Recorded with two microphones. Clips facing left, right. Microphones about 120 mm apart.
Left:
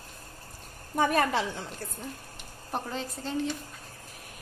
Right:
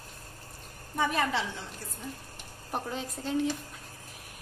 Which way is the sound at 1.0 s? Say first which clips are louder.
Left 3 dB; 50° left (ahead or behind).